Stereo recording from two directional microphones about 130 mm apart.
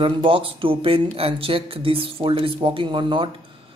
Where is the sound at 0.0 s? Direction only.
45° right (ahead or behind).